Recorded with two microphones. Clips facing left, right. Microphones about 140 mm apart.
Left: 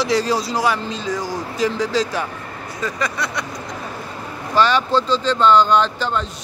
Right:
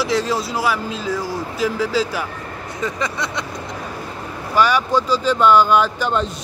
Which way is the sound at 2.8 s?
20° right (ahead or behind).